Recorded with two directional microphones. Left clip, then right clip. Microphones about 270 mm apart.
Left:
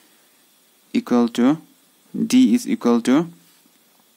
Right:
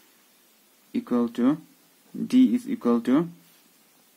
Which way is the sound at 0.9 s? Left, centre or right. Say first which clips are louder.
Left 7 dB; left.